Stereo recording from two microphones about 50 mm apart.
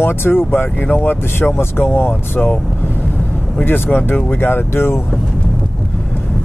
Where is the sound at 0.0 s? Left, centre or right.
Left.